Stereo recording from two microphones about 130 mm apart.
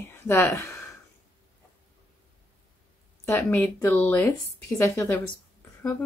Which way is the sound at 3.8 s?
15° left (ahead or behind).